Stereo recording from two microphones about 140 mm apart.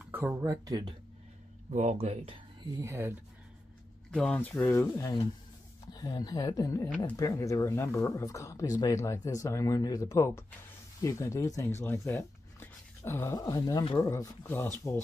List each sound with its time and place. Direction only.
0.0 s speech: 15° right (ahead or behind)
1.7 s speech: 55° right (ahead or behind)
2.6 s speech: 25° right (ahead or behind)
4.1 s speech: 5° left (ahead or behind)
4.7 s speech: 25° left (ahead or behind)